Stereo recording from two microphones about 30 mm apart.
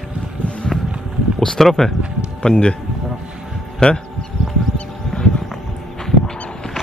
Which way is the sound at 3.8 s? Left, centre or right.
Left.